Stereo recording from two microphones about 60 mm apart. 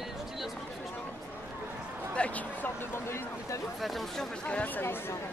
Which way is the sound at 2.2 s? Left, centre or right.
Left.